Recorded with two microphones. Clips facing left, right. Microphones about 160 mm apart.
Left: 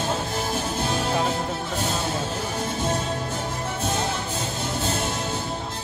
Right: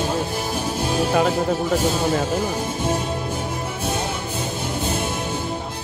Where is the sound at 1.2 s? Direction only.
75° right (ahead or behind).